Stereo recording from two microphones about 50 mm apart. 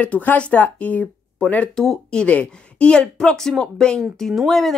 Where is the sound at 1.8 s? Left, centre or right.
Centre.